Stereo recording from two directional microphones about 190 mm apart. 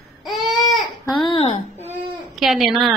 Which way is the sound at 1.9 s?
Centre (ahead or behind).